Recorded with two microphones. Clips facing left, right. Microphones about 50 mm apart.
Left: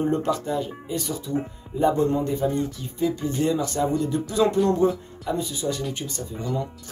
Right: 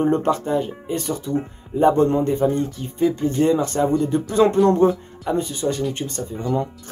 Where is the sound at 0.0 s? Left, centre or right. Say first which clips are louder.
Right 4 dB; right.